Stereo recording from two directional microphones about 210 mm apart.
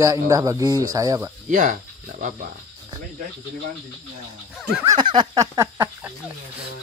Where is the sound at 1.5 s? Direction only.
40° right (ahead or behind).